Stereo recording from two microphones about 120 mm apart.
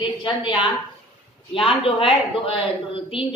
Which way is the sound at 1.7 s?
50° left (ahead or behind).